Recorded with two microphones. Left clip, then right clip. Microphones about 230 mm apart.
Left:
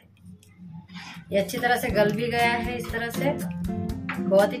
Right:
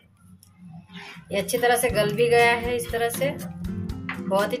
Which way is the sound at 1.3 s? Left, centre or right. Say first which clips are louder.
Right 2 dB; right.